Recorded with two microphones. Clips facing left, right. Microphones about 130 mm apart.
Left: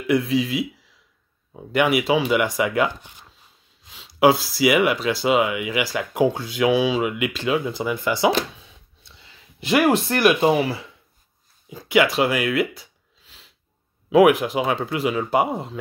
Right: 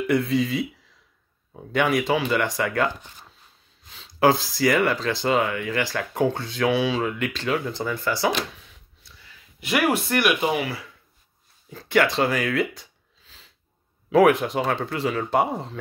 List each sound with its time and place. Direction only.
0.0 s speech: centre (ahead or behind)
8.5 s a sound: 25° left (ahead or behind)
11.7 s speech: 10° left (ahead or behind)
14.1 s speech: 5° left (ahead or behind)